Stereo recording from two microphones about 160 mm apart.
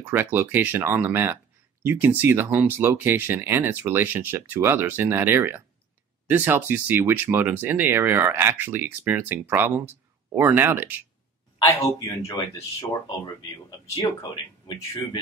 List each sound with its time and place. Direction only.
0.0 s speech: 15° right (ahead or behind)
12.3 s speech: 20° left (ahead or behind)